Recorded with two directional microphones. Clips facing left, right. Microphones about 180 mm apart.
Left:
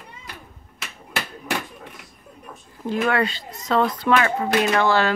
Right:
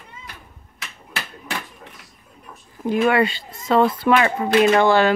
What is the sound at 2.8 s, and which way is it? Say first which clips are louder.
Speech: right 4 dB; 15° right (ahead or behind).